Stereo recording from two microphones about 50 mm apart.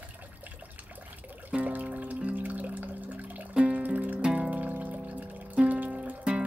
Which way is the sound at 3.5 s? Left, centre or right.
Right.